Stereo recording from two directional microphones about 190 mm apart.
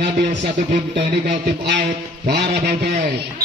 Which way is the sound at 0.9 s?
65° right (ahead or behind).